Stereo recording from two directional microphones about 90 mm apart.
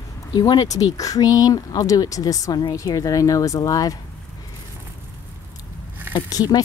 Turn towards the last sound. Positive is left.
turn(degrees=45)  # may be behind; listen again after turning